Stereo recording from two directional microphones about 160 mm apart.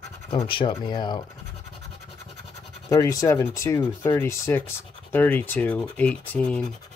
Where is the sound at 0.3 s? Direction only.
30° left (ahead or behind).